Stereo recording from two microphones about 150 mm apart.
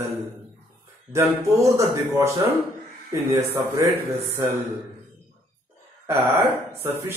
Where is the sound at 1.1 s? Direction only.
20° right (ahead or behind).